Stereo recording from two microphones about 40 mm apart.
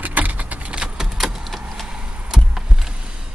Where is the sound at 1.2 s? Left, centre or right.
Centre.